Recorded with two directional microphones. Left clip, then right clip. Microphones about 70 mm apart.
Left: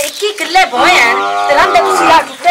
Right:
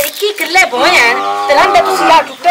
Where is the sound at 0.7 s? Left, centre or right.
Centre.